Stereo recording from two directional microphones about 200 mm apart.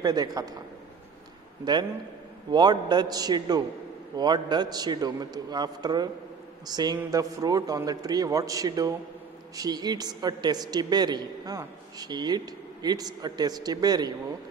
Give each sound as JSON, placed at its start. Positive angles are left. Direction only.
{"t": 0.0, "sound": "a woman's voice", "side_deg": -20}
{"t": 1.6, "sound": "a woman's voice", "side_deg": -20}